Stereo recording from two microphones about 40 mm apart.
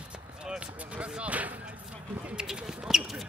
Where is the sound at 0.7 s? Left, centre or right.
Right.